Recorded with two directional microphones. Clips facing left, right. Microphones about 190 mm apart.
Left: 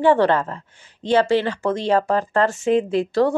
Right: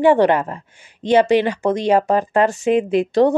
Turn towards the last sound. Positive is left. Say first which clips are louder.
# right 4 dB
turn(degrees=-20)  # may be behind; listen again after turning